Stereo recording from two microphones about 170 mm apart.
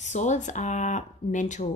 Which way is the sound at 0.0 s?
45° left (ahead or behind).